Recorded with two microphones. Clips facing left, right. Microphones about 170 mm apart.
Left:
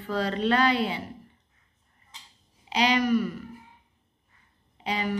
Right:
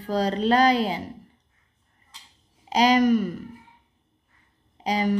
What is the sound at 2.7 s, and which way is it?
Speech, 40° right (ahead or behind).